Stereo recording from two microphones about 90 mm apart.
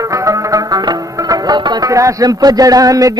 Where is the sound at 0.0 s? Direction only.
40° right (ahead or behind).